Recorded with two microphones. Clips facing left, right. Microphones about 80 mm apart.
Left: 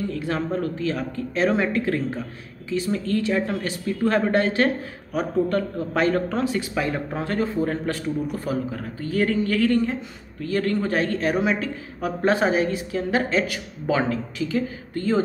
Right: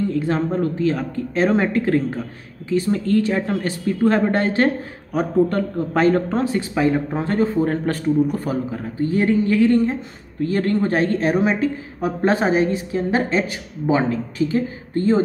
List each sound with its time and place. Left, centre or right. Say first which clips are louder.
0.1 s a woman's voice: right 5 dB; right
6.7 s a man's voice: right 6 dB; centre
7.2 s a man's voice: right 4 dB; right
10.4 s a woman's voice: right 4 dB; right